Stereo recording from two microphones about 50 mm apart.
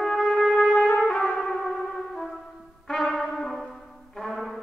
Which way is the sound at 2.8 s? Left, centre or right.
Centre.